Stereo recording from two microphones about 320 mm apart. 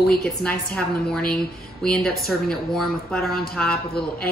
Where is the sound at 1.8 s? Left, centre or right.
Centre.